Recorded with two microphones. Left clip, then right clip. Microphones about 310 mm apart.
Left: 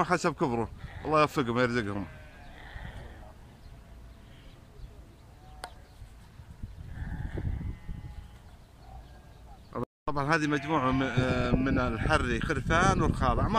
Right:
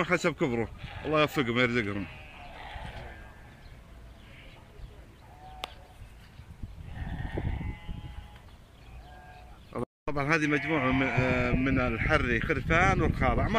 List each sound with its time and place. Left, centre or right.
0.0 s a man's voice: centre
7.3 s sheep: right
9.7 s a man's voice: centre